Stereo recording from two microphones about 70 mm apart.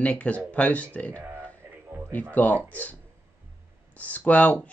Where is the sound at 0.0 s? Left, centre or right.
Centre.